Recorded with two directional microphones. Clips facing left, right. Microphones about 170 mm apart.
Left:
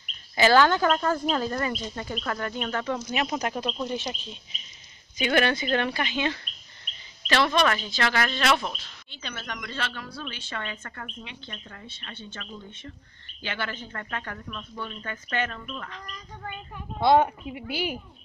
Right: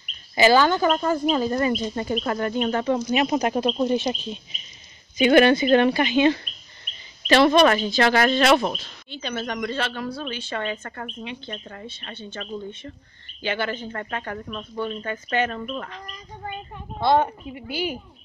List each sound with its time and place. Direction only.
0.4 s speech: 10° right (ahead or behind)
3.5 s speech: 35° right (ahead or behind)
9.7 s speech: 20° right (ahead or behind)
10.0 s speech: 35° right (ahead or behind)
13.4 s speech: 15° right (ahead or behind); by 15.0 s 35° right (ahead or behind)
15.0 s speech: 20° right (ahead or behind)
15.6 s speech: 35° right (ahead or behind)
17.0 s a woman's voice: 5° left (ahead or behind)